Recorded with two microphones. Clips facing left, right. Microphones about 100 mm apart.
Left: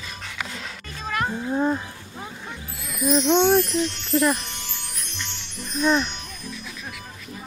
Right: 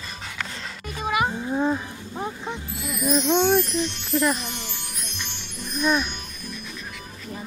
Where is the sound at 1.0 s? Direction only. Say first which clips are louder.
Right 3 dB; 10° right (ahead or behind).